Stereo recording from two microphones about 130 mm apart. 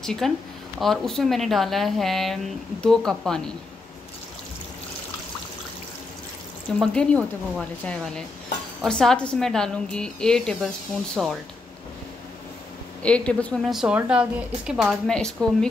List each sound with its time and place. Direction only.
0.0 s speech: 5° left (ahead or behind)
6.8 s speech: 5° left (ahead or behind)
11.2 s speech: 5° right (ahead or behind)
13.0 s speech: 10° left (ahead or behind)